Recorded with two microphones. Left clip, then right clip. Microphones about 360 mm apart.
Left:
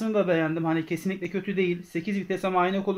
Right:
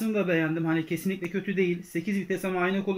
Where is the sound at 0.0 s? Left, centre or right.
Centre.